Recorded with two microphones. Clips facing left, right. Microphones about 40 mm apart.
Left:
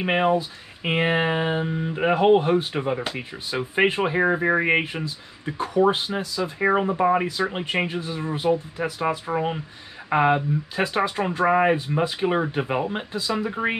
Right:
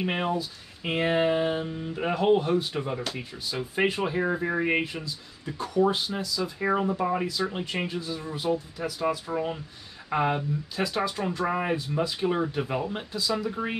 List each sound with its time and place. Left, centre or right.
0.0 s speech: left